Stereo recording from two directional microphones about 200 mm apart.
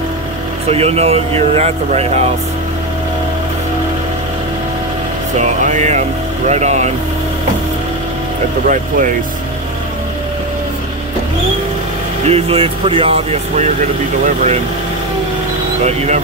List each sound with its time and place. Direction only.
0.7 s speech: 30° right (ahead or behind)
5.4 s speech: 35° right (ahead or behind)
8.6 s speech: 40° right (ahead or behind)
12.3 s speech: 30° right (ahead or behind)
15.8 s speech: 35° right (ahead or behind)